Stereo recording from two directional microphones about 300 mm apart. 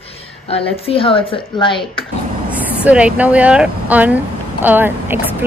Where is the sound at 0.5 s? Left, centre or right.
Centre.